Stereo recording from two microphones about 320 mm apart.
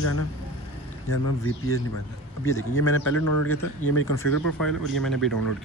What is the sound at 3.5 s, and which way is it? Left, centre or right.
Speech, left.